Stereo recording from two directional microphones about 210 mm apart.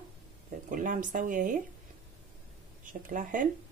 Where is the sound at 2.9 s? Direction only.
40° right (ahead or behind).